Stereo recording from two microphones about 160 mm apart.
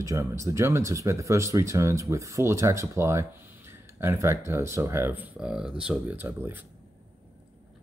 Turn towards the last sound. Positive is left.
turn(degrees=-15)  # may be behind; listen again after turning